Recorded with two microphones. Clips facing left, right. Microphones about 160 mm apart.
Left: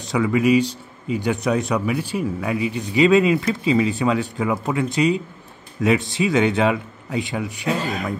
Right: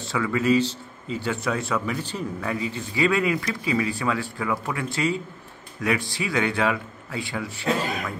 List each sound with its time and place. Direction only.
0.0 s speech: 15° left (ahead or behind)